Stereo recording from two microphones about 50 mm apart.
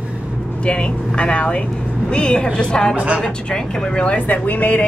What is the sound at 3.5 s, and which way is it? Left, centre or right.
Speech, centre.